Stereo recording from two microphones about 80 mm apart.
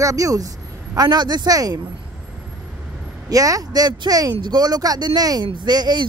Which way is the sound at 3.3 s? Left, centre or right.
Right.